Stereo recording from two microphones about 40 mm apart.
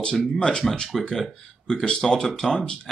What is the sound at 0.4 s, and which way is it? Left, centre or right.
Speech, left.